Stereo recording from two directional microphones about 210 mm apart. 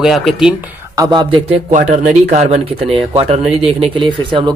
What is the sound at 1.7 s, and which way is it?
Speech, 35° right (ahead or behind).